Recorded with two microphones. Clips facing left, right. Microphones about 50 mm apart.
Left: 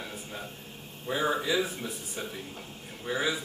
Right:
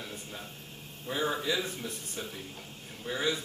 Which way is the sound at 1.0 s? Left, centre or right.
Centre.